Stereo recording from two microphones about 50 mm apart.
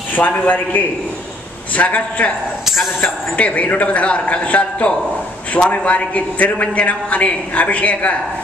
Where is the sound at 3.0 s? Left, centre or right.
Left.